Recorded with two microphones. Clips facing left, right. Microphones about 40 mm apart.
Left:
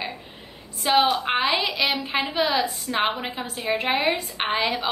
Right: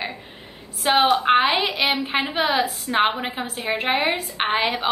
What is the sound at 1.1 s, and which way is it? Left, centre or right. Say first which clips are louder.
A woman's voice: right 5 dB; right.